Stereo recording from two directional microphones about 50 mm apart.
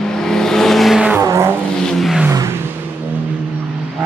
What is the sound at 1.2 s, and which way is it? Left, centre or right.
Music, right.